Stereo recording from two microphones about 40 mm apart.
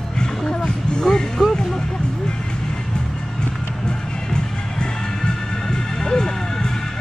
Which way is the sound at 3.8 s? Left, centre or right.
Left.